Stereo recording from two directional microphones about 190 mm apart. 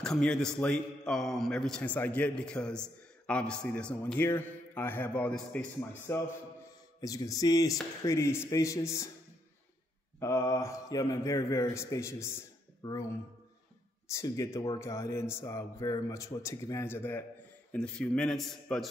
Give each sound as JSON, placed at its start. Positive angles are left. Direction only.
{"t": 0.0, "sound": "a man's voice", "side_deg": 5}
{"t": 10.2, "sound": "speech", "side_deg": 15}
{"t": 14.1, "sound": "a man's voice", "side_deg": 15}